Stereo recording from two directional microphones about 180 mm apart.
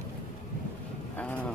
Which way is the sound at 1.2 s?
10° left (ahead or behind).